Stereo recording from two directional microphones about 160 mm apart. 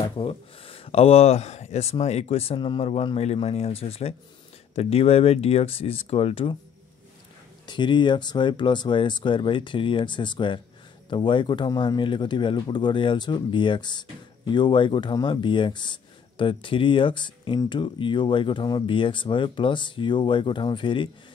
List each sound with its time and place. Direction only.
0.2 s speech: 35° left (ahead or behind)
7.6 s speech: 30° left (ahead or behind)